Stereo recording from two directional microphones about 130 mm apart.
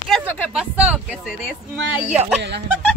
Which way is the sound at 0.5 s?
10° right (ahead or behind).